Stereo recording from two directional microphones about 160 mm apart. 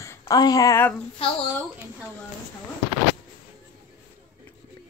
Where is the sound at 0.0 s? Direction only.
15° left (ahead or behind).